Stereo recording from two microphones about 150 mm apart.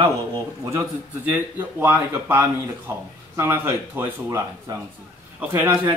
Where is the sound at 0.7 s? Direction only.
15° right (ahead or behind).